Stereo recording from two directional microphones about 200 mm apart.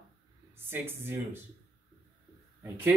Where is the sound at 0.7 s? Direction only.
10° right (ahead or behind).